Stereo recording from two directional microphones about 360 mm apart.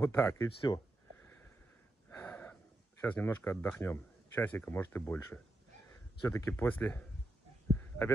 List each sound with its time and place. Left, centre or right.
0.0 s speech: centre
2.0 s gasp: centre
3.0 s speech: centre